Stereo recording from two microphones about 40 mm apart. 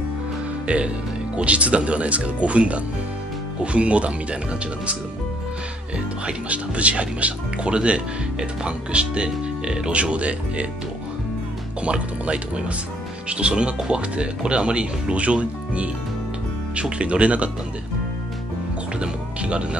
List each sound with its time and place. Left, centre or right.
0.7 s speech: right
6.2 s speech: right
11.8 s speech: right
17.0 s speech: right
18.9 s music: right